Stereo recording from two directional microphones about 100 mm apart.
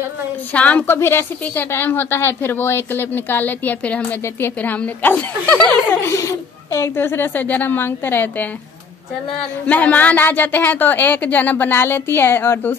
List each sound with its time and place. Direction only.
0.5 s speech: 15° left (ahead or behind)
0.9 s a woman's voice: 25° left (ahead or behind)
5.7 s a woman's voice: 25° left (ahead or behind)
9.7 s a woman's voice: 15° left (ahead or behind)